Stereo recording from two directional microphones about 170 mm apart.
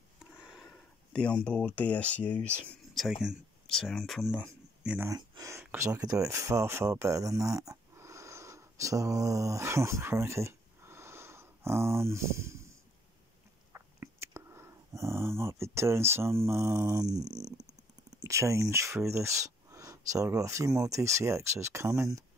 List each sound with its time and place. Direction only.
0.4 s speech: 5° right (ahead or behind)
5.1 s speech: 20° right (ahead or behind)
13.7 s a sound: 15° right (ahead or behind)
18.2 s speech: 15° right (ahead or behind)